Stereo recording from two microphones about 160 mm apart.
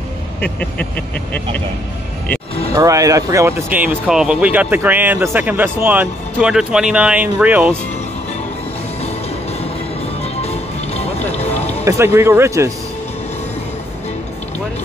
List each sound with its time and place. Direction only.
0.4 s speech: 10° left (ahead or behind)
2.7 s speech: 20° right (ahead or behind)
9.0 s music: 40° left (ahead or behind)
11.8 s speech: 15° right (ahead or behind)